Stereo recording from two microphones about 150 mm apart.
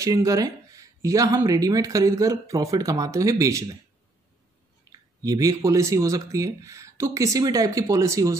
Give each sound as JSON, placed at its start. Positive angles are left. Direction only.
{"t": 0.0, "sound": "speech", "side_deg": -20}
{"t": 4.9, "sound": "speech", "side_deg": -25}